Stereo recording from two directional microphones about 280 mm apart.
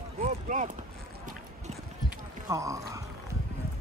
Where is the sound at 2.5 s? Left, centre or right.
Centre.